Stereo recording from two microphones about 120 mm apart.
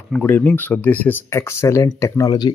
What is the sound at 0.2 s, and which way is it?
Speech, 15° left (ahead or behind).